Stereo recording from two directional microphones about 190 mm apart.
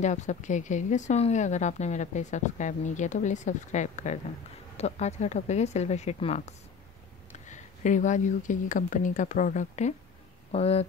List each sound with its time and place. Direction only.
0.0 s speech: 40° left (ahead or behind)